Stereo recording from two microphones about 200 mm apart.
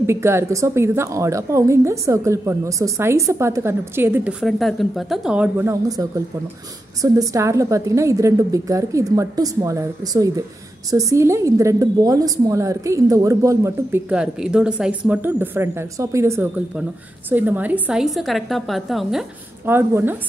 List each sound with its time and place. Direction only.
0.0 s a woman's voice: 15° right (ahead or behind)